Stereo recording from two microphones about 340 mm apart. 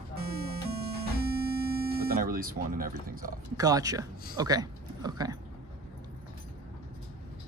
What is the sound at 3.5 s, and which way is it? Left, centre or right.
Speech, centre.